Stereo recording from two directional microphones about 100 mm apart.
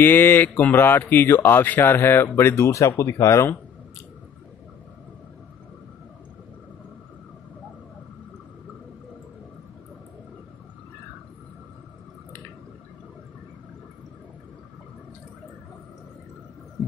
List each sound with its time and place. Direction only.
0.0 s speech: 20° left (ahead or behind)